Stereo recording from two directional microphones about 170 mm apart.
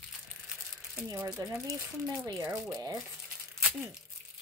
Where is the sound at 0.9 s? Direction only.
15° right (ahead or behind).